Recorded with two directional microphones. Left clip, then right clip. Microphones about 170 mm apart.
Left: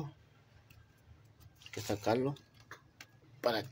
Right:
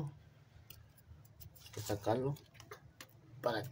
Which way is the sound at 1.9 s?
15° left (ahead or behind).